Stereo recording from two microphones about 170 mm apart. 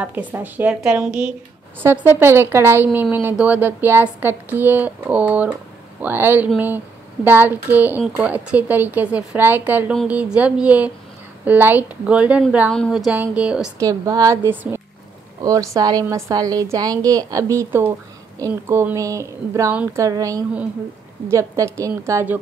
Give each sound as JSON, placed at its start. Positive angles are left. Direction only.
{"t": 0.0, "sound": "speech", "side_deg": -10}
{"t": 13.7, "sound": "a woman's voice", "side_deg": -20}